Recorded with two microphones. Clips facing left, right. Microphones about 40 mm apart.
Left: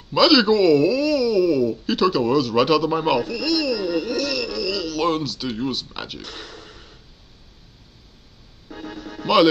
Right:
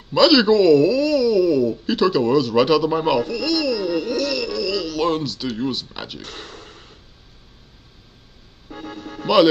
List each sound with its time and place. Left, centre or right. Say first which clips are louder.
0.1 s speech: right 2 dB; centre
6.2 s a sound: right 1 dB; right
8.7 s music: right 1 dB; right